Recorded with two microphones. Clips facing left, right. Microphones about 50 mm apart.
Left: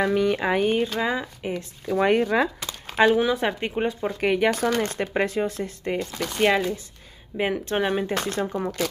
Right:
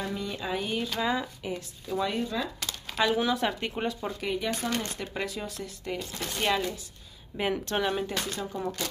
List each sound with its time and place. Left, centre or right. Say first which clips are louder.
0.0 s speech: left 12 dB; left
0.9 s speech: left 3 dB; left
2.1 s speech: left 10 dB; left
2.6 s a sound: left 8 dB; left
3.2 s speech: left 5 dB; centre
4.2 s speech: left 12 dB; left
4.5 s speech: left 8 dB; left
4.9 s speech: left 10 dB; left
6.4 s speech: left 7 dB; left
7.3 s speech: left 4 dB; left
8.1 s speech: left 7 dB; left